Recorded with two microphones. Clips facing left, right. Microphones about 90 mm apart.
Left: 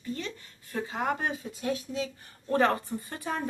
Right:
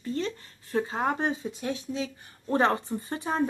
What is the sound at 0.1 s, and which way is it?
A woman's voice, 35° right (ahead or behind).